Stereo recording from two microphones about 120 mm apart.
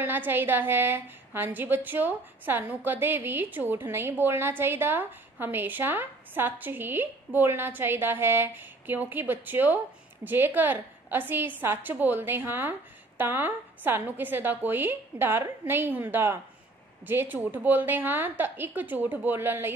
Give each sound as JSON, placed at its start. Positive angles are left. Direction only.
{"t": 0.0, "sound": "a woman's voice", "side_deg": -15}